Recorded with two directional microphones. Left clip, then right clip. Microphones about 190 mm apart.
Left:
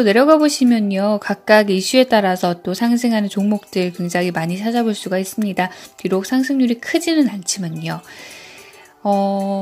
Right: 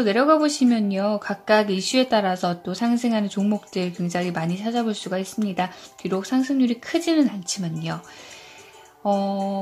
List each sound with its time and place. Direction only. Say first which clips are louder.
0.0 s speech: left 6 dB; 20° left (ahead or behind)
9.0 s speech: left 5 dB; 20° left (ahead or behind)